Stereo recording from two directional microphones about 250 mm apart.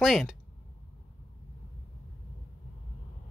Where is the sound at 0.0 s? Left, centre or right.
Centre.